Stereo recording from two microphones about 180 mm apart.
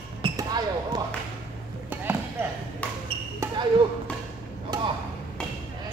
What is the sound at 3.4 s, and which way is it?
Basketball bounce, 15° right (ahead or behind).